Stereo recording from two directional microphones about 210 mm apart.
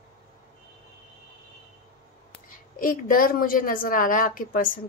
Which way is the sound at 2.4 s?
40° left (ahead or behind).